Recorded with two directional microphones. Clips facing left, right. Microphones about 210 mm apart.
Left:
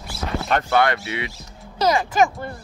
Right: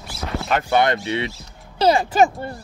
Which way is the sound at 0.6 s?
20° right (ahead or behind).